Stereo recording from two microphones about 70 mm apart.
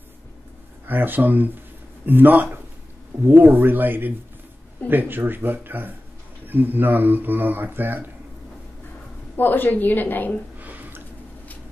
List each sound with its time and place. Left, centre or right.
0.8 s speech: right
9.4 s a woman's voice: left
10.6 s a sound: right